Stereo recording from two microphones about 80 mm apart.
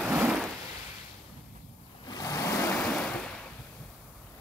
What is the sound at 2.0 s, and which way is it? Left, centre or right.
Vehicle, left.